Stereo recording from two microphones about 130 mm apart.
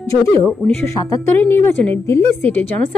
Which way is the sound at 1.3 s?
15° left (ahead or behind).